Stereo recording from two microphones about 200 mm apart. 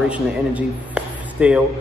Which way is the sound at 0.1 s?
5° right (ahead or behind).